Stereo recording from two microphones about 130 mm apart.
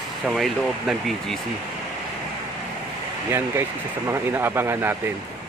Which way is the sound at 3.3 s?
20° right (ahead or behind).